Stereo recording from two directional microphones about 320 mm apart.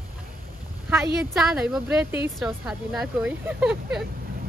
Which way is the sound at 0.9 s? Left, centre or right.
Centre.